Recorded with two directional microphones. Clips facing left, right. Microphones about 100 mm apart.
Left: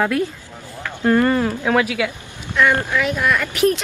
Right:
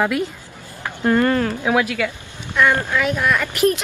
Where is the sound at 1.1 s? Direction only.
10° left (ahead or behind).